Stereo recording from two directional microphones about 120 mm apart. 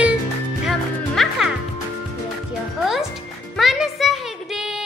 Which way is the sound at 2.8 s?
5° right (ahead or behind).